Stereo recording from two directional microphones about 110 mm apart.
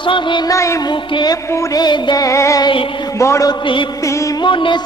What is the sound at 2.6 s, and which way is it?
Speech, 50° left (ahead or behind).